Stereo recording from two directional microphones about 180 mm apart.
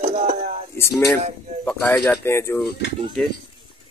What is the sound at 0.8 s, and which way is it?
Speech, 15° left (ahead or behind).